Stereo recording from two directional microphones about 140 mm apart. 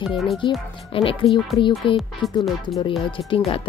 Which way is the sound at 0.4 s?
35° left (ahead or behind).